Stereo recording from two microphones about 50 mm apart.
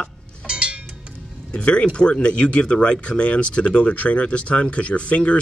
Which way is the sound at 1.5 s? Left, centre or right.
Left.